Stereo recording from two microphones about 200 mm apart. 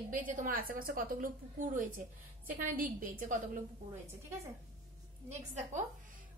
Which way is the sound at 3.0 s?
45° right (ahead or behind).